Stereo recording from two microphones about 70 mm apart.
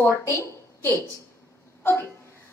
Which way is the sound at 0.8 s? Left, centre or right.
Left.